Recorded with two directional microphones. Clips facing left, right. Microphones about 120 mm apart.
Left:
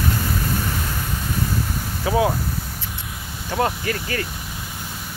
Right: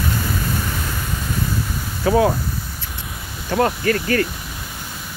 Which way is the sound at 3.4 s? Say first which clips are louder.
Right 4 dB; 15° left (ahead or behind).